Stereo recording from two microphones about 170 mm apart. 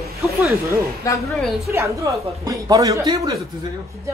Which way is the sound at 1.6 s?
15° right (ahead or behind).